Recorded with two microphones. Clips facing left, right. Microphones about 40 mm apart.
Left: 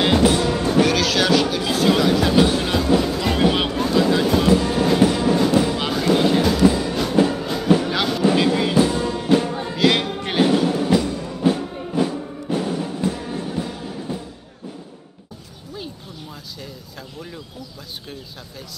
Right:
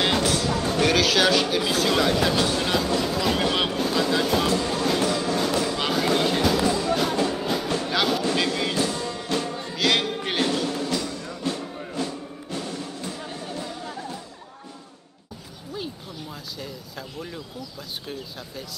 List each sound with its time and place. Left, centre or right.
0.2 s music: centre
0.8 s music: centre
2.9 s vehicle: centre
4.5 s train: centre
5.8 s music: centre
7.3 s a sound: centre
7.7 s music: centre